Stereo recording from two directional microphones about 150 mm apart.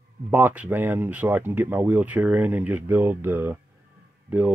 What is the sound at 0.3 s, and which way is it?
Speech, 10° right (ahead or behind).